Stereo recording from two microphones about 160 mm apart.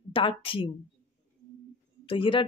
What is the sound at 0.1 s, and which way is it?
Speech, 35° left (ahead or behind).